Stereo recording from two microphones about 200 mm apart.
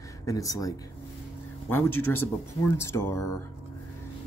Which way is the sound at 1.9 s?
90° left.